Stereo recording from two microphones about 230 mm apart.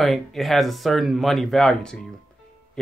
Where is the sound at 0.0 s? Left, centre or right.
Centre.